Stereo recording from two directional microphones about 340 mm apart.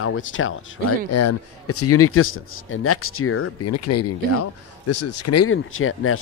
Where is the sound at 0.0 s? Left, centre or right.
Left.